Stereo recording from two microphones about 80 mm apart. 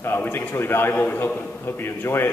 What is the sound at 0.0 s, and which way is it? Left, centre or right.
A man's voice, left.